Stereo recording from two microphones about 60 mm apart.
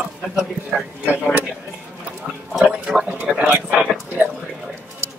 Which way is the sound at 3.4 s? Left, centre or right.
Centre.